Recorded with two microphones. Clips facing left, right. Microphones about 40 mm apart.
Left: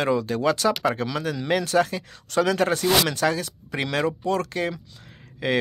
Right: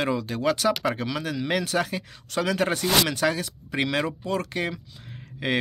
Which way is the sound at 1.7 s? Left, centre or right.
Centre.